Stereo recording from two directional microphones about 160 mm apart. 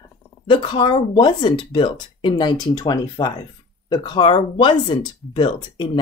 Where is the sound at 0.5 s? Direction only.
30° left (ahead or behind).